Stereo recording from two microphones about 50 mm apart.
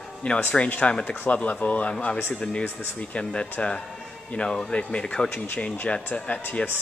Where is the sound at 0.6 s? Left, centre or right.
Left.